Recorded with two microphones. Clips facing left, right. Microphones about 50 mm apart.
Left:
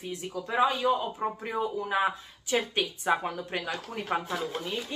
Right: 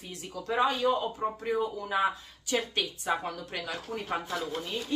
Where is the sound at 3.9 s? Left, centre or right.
Centre.